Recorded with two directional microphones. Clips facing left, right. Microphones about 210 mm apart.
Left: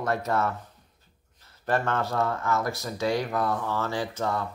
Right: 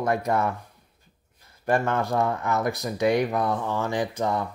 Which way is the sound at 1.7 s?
10° right (ahead or behind).